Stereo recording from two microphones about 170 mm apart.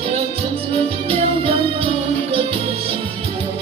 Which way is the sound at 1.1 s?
35° right (ahead or behind).